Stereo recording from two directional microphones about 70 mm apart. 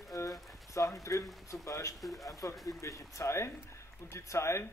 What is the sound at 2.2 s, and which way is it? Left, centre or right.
A man's voice, left.